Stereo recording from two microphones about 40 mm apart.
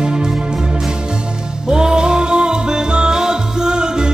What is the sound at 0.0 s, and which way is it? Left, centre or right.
Music, centre.